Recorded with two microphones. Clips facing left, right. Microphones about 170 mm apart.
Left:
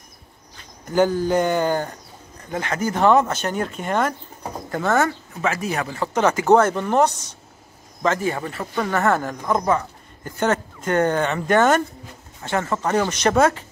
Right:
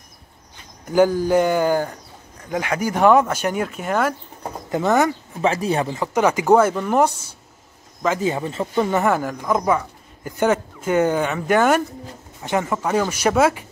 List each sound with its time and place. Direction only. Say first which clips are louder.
0.8 s speech: right 2 dB; 10° right (ahead or behind)
4.6 s speech: right 2 dB; 20° right (ahead or behind)
5.4 s speech: right 4 dB; 30° right (ahead or behind)
5.9 s speech: right 1 dB; 15° right (ahead or behind)
8.2 s speech: right 3 dB; 20° right (ahead or behind)